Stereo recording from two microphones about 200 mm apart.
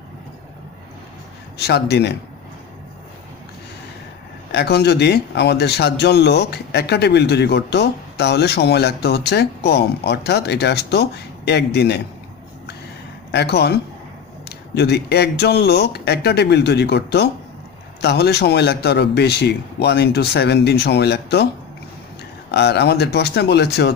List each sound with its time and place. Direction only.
1.6 s speech: 55° left (ahead or behind)
4.5 s speech: 55° left (ahead or behind)
13.3 s speech: 55° left (ahead or behind)
22.5 s speech: 55° left (ahead or behind)